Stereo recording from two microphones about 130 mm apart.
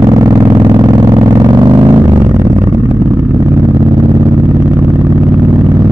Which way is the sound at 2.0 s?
35° right (ahead or behind).